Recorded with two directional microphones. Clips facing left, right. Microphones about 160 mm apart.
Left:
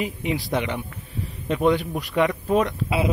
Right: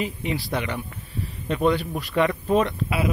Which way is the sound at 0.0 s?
15° left (ahead or behind).